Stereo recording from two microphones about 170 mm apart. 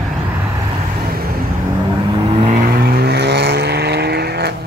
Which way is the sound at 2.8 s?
70° right (ahead or behind).